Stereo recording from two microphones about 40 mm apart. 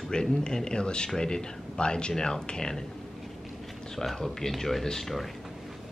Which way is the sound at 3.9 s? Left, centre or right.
Centre.